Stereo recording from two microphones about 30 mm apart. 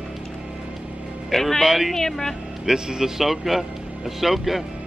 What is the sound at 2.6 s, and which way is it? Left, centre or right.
Speech, right.